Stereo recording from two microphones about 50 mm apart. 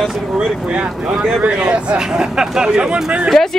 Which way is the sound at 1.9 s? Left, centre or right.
Centre.